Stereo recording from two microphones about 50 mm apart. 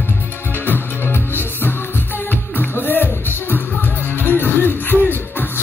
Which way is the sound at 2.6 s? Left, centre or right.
Left.